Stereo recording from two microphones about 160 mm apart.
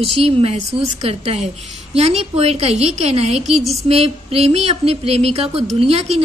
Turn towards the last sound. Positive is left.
turn(degrees=-40)  # may be behind; listen again after turning